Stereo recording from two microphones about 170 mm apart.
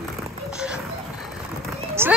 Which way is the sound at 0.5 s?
5° right (ahead or behind).